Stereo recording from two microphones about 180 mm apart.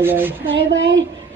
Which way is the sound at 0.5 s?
90° right.